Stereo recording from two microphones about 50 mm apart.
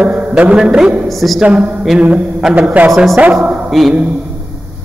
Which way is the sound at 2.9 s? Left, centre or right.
Centre.